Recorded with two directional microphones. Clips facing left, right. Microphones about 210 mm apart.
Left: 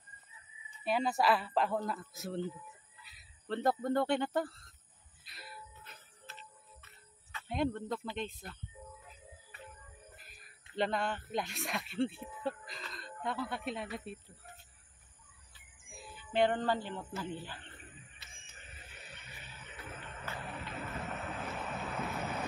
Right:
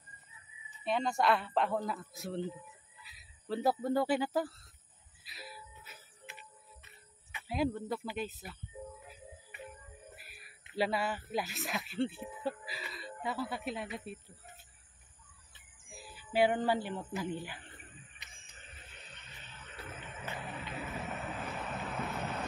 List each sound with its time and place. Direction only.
0.7 s speech: 5° left (ahead or behind)
5.2 s music: centre (ahead or behind)
7.4 s speech: 5° right (ahead or behind)
9.5 s music: 15° right (ahead or behind)
10.1 s a sound: 10° right (ahead or behind)
10.8 s speech: 5° right (ahead or behind)
15.9 s speech: 5° right (ahead or behind)
18.2 s a sound: 20° right (ahead or behind)
18.9 s a sound: 10° left (ahead or behind)
20.3 s boat: centre (ahead or behind)